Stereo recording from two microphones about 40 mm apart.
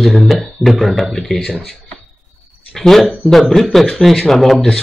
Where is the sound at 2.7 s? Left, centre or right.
Centre.